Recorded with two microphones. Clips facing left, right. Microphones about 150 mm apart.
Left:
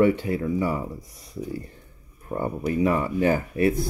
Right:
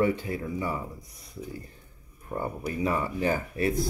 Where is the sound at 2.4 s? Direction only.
25° left (ahead or behind).